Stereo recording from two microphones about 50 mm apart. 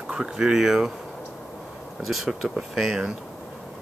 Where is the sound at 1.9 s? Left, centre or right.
Centre.